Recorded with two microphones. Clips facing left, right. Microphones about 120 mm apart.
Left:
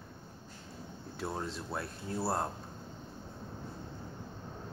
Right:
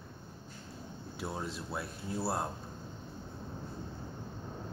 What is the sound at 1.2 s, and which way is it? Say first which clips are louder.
Speech: left 1 dB; 10° right (ahead or behind).